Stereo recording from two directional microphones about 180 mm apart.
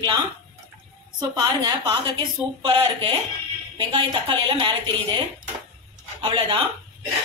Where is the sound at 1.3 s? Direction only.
25° right (ahead or behind).